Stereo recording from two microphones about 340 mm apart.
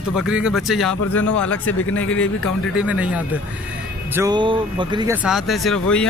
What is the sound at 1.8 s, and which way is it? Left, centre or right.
Speech, left.